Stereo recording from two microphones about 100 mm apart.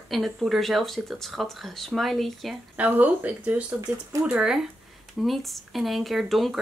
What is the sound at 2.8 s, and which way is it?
Speech, 15° right (ahead or behind).